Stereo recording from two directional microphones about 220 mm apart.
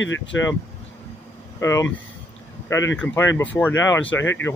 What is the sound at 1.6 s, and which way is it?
Speech, 15° left (ahead or behind).